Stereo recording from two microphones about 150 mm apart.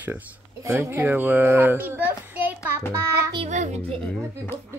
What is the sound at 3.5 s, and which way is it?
Speech, 50° right (ahead or behind).